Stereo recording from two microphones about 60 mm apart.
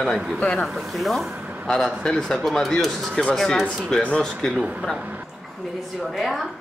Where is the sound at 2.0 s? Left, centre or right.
Centre.